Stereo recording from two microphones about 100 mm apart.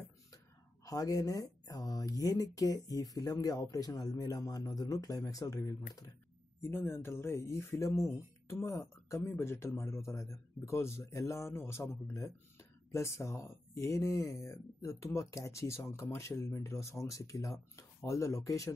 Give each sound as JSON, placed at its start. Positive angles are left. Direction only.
{"t": 0.8, "sound": "speech", "side_deg": 35}